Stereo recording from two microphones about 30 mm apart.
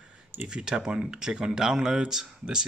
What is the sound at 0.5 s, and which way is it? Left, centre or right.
Speech, right.